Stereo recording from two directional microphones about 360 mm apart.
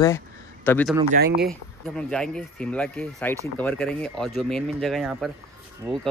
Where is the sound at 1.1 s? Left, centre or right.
Right.